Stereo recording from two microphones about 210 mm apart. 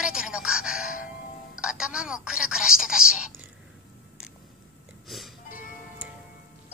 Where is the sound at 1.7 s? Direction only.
5° right (ahead or behind).